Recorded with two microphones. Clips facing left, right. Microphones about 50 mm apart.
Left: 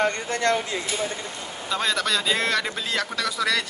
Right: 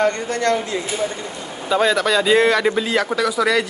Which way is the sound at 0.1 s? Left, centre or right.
Right.